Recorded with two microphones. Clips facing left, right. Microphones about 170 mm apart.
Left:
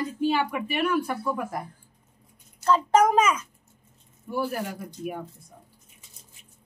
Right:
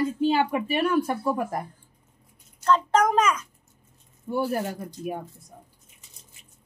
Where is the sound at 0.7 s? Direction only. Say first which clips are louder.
Even; 35° right (ahead or behind).